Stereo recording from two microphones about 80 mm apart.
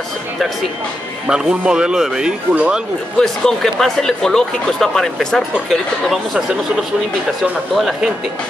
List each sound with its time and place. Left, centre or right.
1.2 s speech: centre
3.2 s speech: centre
7.7 s a man's voice: centre